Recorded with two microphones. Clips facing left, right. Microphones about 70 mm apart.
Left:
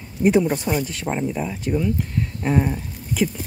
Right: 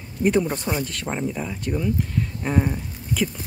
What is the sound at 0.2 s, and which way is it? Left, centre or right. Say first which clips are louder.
Speech: left 3 dB; centre.